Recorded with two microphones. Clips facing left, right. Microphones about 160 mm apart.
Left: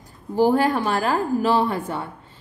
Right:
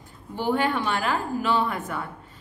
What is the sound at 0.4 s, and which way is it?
A woman's voice, 40° left (ahead or behind).